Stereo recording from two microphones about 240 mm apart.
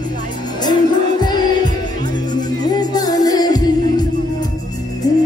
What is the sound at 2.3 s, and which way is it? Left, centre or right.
Music, centre.